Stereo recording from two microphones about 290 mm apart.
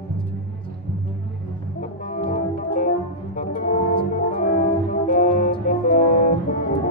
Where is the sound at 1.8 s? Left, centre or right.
Left.